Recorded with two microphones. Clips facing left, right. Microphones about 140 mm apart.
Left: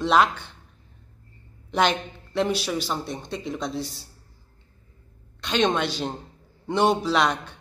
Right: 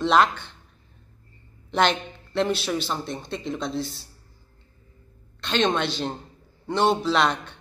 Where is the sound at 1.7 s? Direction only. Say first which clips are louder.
Even; 10° left (ahead or behind).